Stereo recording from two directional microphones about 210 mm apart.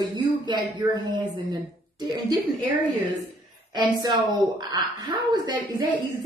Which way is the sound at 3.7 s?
20° right (ahead or behind).